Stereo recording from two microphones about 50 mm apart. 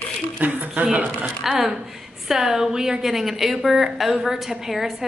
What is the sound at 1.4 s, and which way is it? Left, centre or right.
A woman's voice, centre.